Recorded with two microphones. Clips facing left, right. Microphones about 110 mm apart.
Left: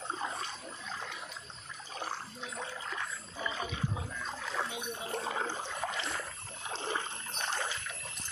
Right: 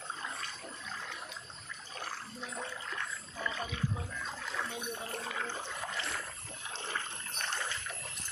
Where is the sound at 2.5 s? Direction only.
5° left (ahead or behind).